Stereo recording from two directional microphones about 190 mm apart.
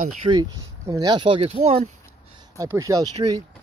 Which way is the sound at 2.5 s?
15° right (ahead or behind).